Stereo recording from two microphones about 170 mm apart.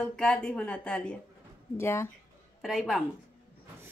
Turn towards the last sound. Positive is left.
turn(degrees=0)  # may be behind; listen again after turning